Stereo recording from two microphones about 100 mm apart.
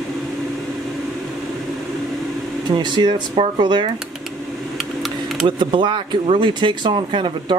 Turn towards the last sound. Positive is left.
turn(degrees=-55)  # may be behind; listen again after turning